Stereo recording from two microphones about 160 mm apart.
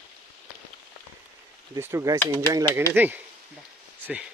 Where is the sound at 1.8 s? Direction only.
15° right (ahead or behind).